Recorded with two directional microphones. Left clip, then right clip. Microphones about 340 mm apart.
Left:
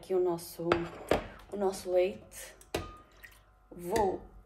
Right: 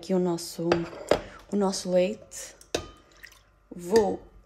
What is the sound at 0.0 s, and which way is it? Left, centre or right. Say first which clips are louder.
Speech: right 3 dB; right.